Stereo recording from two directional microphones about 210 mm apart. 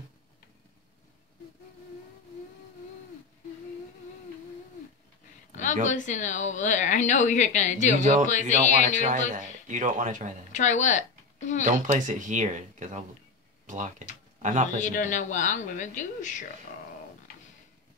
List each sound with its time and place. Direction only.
5.9 s a woman's voice: 35° left (ahead or behind)
8.0 s speech: 35° right (ahead or behind)
8.3 s a woman's voice: 35° left (ahead or behind)
9.0 s speech: 35° right (ahead or behind)
10.5 s a sound: 35° left (ahead or behind)
11.6 s speech: 35° right (ahead or behind)
14.8 s a woman's voice: 35° left (ahead or behind)